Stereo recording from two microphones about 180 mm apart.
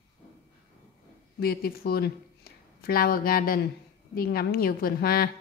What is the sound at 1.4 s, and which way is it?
A woman's voice, 55° left (ahead or behind).